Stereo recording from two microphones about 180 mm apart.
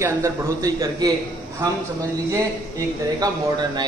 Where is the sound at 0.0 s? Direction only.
20° right (ahead or behind).